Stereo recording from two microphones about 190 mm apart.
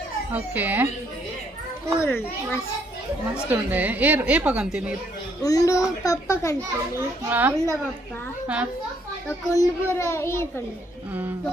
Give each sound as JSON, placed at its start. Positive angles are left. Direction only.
{"t": 0.3, "sound": "a woman's voice", "side_deg": -10}
{"t": 2.0, "sound": "a child's voice", "side_deg": 15}
{"t": 3.4, "sound": "a woman's voice", "side_deg": -10}
{"t": 5.4, "sound": "a child's voice", "side_deg": 20}
{"t": 7.0, "sound": "a woman's voice", "side_deg": -10}
{"t": 9.5, "sound": "a child's voice", "side_deg": 15}